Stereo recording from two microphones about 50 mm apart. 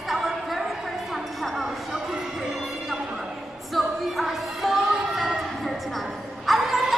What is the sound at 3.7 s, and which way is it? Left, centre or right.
Music, centre.